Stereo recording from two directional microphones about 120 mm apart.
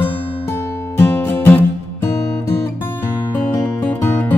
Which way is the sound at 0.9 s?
20° left (ahead or behind).